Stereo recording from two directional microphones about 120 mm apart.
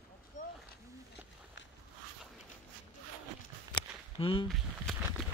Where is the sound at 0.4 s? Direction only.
90° left.